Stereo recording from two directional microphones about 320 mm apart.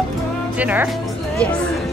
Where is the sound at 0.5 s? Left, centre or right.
Centre.